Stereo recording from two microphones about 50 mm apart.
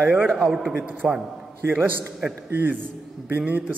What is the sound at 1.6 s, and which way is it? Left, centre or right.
Speech, right.